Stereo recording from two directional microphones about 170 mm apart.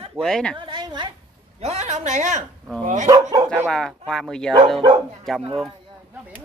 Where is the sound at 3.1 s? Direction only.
20° right (ahead or behind).